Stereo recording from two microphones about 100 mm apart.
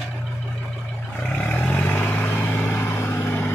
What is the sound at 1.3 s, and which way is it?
Vehicle, 20° left (ahead or behind).